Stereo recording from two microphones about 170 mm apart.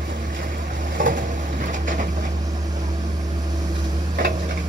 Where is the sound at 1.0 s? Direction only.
50° right (ahead or behind).